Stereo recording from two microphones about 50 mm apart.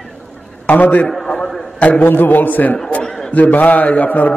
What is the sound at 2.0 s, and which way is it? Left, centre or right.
Speech, left.